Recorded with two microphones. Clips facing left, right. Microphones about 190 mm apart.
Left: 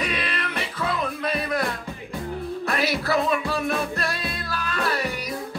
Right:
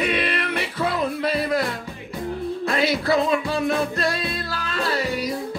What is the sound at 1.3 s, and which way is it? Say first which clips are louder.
Music: right 3 dB; 30° right (ahead or behind).